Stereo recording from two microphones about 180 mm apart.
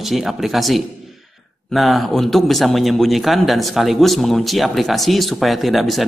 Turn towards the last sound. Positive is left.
turn(degrees=0)  # may be behind; listen again after turning